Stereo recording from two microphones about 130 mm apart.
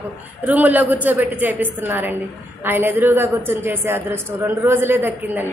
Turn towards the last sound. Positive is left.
turn(degrees=-15)  # may be behind; listen again after turning